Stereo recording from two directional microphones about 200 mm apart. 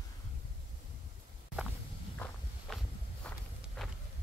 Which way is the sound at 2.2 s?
5° left (ahead or behind).